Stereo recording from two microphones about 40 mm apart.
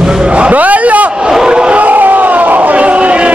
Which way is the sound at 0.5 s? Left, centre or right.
Right.